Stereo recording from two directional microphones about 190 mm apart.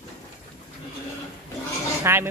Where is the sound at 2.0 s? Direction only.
10° right (ahead or behind).